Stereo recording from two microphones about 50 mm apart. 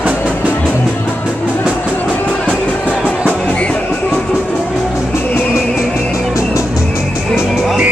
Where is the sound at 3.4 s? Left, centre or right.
Left.